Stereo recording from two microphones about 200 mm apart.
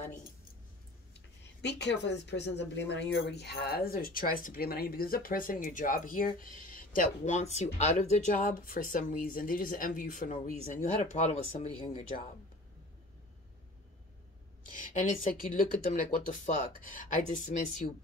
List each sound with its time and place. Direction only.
1.6 s speech: 60° left (ahead or behind); by 12.0 s 30° left (ahead or behind)
15.0 s speech: 45° left (ahead or behind)